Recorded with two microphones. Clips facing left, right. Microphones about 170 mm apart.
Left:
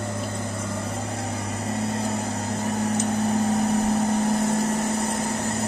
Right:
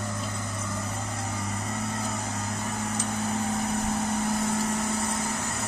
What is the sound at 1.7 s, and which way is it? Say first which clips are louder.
Vehicle: left 8 dB; 30° left (ahead or behind).